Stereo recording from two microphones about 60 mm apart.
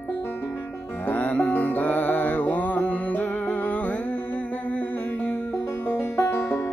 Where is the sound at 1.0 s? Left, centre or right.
Left.